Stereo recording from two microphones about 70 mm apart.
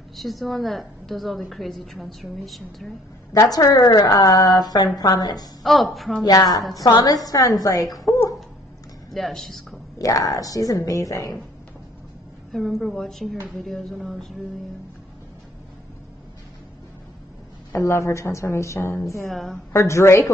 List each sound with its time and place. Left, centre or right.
0.1 s a woman's voice: centre
3.3 s a woman's voice: left
5.6 s a woman's voice: centre
6.2 s a woman's voice: left
6.9 s a woman's voice: left
9.1 s a woman's voice: centre
9.9 s a woman's voice: left
12.5 s a woman's voice: centre
17.7 s a woman's voice: left
19.2 s a woman's voice: centre
19.7 s a woman's voice: left